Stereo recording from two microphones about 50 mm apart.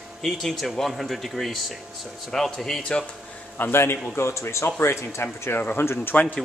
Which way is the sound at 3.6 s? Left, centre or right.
Left.